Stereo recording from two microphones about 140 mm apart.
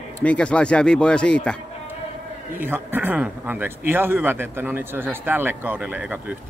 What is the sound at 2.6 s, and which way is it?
Speech, 15° right (ahead or behind).